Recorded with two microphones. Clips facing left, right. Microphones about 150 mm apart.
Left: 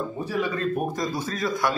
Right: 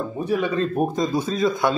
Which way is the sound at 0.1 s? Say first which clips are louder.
Right 4 dB; 20° right (ahead or behind).